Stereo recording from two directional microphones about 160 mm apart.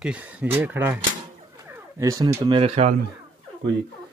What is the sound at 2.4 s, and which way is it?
Speech, 35° right (ahead or behind).